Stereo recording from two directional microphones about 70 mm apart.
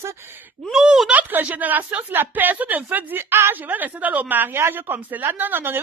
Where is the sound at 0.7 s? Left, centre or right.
Centre.